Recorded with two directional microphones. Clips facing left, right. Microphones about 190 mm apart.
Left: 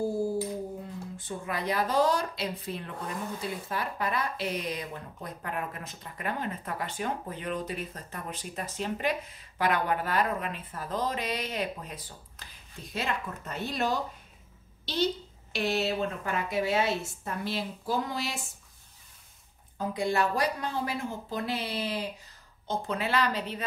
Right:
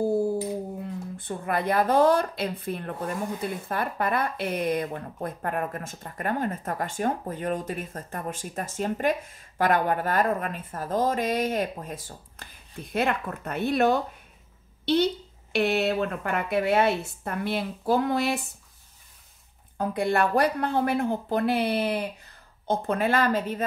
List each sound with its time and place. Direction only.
1.1 s a woman's voice: 55° right (ahead or behind)
19.8 s a woman's voice: 60° right (ahead or behind)